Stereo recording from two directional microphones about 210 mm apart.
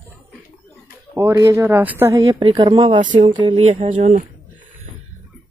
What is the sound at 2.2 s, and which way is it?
Speech, 25° right (ahead or behind).